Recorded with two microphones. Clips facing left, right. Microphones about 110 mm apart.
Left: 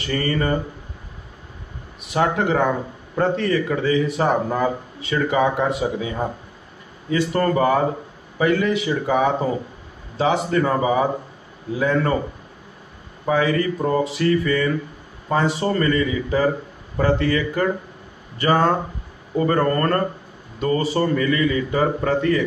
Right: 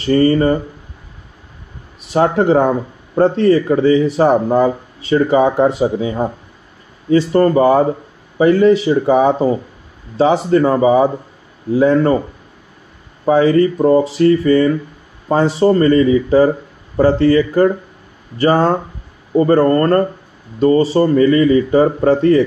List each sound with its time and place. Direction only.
0.0 s speech: 35° right (ahead or behind)
2.0 s speech: 35° right (ahead or behind)
13.3 s speech: 35° right (ahead or behind)